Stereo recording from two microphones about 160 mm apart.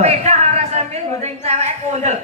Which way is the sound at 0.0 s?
45° right (ahead or behind).